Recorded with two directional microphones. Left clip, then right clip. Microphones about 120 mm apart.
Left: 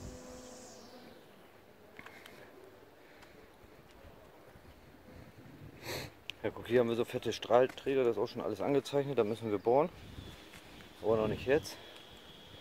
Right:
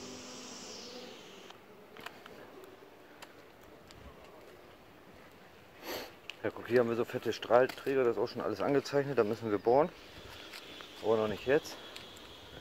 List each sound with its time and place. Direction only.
5.8 s speech: 30° left (ahead or behind)
8.1 s speech: 20° left (ahead or behind)
11.1 s speech: 30° left (ahead or behind)